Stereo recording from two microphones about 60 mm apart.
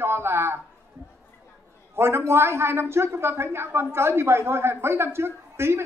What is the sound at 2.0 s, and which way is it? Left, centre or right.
A man's voice, right.